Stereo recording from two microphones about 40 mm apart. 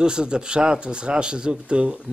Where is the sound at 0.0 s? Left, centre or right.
Right.